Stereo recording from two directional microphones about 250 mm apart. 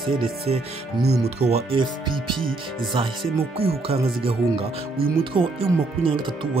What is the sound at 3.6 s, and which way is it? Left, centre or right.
Speech, right.